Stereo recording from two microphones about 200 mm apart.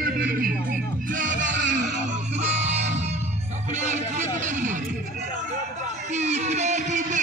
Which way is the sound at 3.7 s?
35° right (ahead or behind).